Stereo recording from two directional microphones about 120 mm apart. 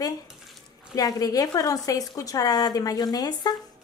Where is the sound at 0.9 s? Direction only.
30° left (ahead or behind).